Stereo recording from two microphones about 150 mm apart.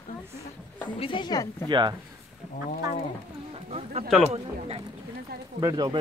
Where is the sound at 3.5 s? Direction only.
40° right (ahead or behind).